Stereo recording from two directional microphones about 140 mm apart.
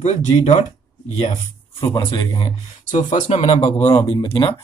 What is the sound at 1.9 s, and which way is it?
Speech, 35° left (ahead or behind).